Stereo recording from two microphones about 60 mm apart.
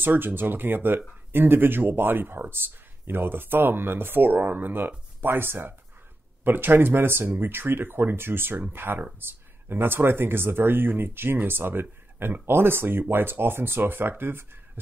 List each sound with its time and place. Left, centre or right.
0.0 s speech: right